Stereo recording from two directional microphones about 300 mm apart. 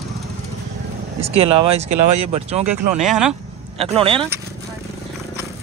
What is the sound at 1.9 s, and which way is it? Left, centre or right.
Speech, right.